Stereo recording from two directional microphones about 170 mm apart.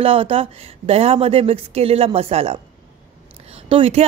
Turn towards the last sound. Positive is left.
turn(degrees=-35)  # may be behind; listen again after turning